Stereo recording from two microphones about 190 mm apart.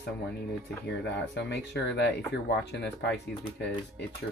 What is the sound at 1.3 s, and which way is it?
Speech, 65° left (ahead or behind).